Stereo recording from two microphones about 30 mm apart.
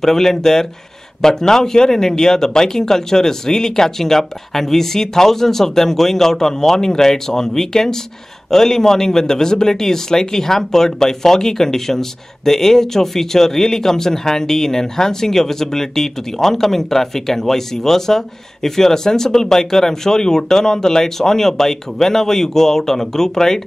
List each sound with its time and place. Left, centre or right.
0.0 s a man's voice: centre